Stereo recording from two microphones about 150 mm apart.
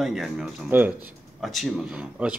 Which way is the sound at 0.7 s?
10° right (ahead or behind).